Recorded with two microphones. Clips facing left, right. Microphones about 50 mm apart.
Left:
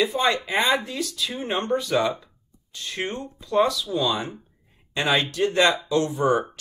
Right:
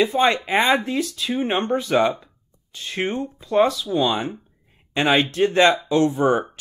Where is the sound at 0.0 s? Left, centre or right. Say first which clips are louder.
Right 4 dB; right.